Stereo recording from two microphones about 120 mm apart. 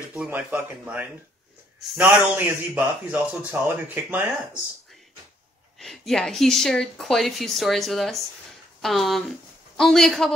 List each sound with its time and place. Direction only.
0.1 s speech: 10° right (ahead or behind)
5.8 s speech: 5° left (ahead or behind)